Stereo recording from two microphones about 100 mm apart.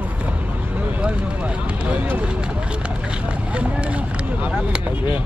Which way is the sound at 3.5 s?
15° right (ahead or behind).